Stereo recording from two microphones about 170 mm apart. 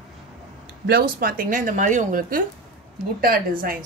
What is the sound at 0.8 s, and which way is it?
Speech, 65° right (ahead or behind).